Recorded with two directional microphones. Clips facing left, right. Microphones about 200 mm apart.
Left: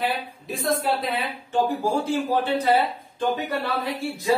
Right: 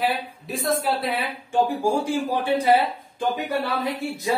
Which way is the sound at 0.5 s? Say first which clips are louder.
Even; 5° right (ahead or behind).